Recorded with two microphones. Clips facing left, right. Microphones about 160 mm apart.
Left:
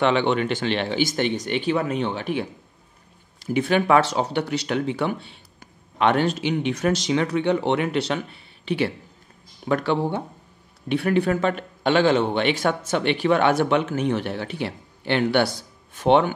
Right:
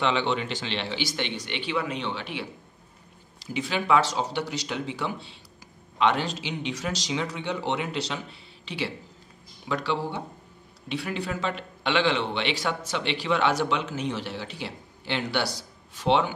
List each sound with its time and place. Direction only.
0.0 s a man's voice: 55° left (ahead or behind)